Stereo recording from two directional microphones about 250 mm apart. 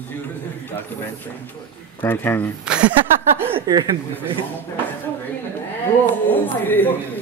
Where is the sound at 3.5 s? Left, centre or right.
Centre.